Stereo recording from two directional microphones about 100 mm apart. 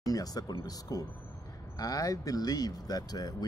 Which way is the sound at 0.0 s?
40° left (ahead or behind).